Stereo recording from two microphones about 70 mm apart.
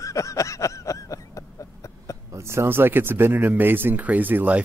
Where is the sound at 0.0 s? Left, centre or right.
Left.